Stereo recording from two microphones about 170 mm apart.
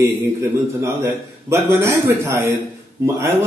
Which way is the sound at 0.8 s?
15° right (ahead or behind).